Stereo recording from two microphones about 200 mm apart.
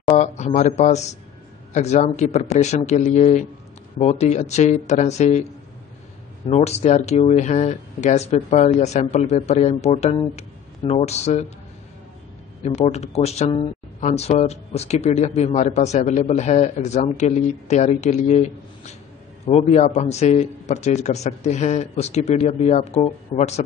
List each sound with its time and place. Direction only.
0.0 s a sound: 35° left (ahead or behind)
1.7 s speech: 35° left (ahead or behind)
12.6 s speech: 35° left (ahead or behind)